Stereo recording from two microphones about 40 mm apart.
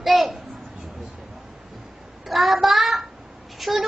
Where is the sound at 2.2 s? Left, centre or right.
Centre.